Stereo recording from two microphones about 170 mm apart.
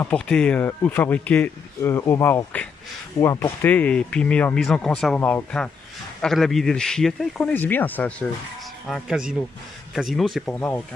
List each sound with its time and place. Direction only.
0.0 s a man's voice: 5° left (ahead or behind)
8.8 s a man's voice: centre (ahead or behind)